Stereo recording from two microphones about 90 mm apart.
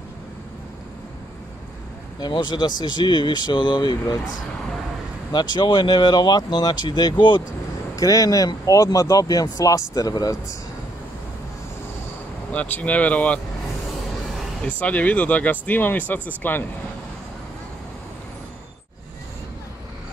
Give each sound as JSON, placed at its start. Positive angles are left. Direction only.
{"t": 2.1, "sound": "speech", "side_deg": 55}
{"t": 5.3, "sound": "speech", "side_deg": 55}
{"t": 7.9, "sound": "speech", "side_deg": 35}
{"t": 12.5, "sound": "speech", "side_deg": 15}
{"t": 14.8, "sound": "speech", "side_deg": 15}